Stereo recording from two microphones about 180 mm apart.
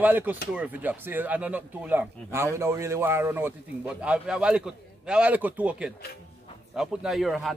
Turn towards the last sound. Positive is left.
turn(degrees=0)  # may be behind; listen again after turning